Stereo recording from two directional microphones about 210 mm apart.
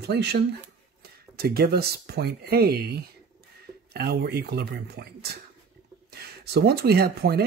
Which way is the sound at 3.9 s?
50° right (ahead or behind).